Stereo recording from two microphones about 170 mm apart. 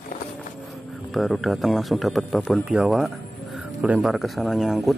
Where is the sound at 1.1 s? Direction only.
Centre (ahead or behind).